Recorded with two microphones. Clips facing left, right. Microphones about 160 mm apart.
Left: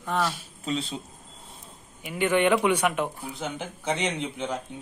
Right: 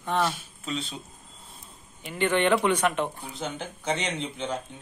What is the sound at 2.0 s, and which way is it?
Speech, 10° left (ahead or behind).